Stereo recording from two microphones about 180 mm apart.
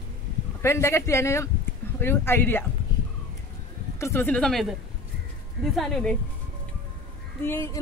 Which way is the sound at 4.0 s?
15° left (ahead or behind).